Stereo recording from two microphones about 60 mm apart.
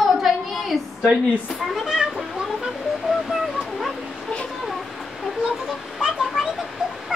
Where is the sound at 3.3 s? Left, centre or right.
Centre.